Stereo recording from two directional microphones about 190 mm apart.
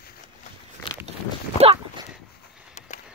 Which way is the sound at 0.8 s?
25° left (ahead or behind).